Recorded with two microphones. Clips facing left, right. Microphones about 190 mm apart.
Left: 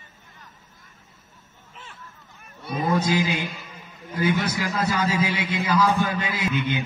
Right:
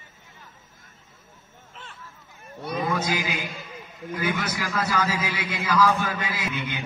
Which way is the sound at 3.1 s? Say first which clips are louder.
Left 5 dB; 25° left (ahead or behind).